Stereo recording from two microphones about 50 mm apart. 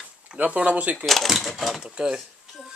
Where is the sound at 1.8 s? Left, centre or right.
Centre.